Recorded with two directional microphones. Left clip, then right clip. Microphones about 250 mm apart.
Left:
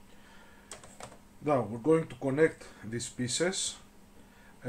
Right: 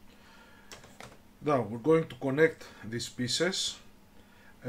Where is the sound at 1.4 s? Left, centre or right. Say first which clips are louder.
Even; centre.